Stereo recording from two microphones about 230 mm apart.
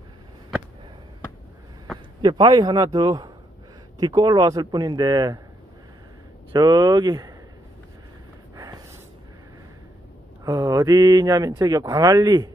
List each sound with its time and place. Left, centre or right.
2.2 s speech: centre
6.5 s speech: centre
8.5 s gasp: centre
10.4 s speech: centre